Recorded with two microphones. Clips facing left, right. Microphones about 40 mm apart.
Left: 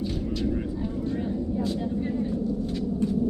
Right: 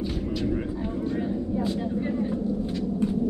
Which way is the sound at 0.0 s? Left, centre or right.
Centre.